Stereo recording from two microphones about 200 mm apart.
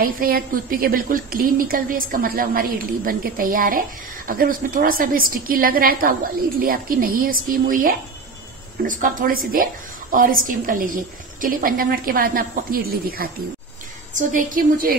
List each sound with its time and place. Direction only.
0.0 s a woman's voice: 45° right (ahead or behind)